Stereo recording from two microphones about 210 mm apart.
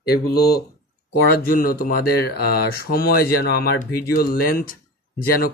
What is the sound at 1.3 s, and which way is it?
Speech, 45° left (ahead or behind).